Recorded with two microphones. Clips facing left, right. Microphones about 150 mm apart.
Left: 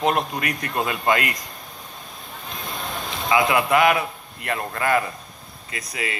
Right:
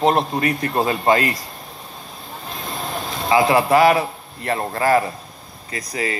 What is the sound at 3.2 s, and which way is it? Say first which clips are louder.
A man's voice: right 4 dB; 35° right (ahead or behind).